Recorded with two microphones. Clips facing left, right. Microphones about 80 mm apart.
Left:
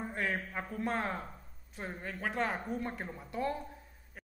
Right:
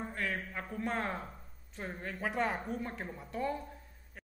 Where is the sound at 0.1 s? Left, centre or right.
Left.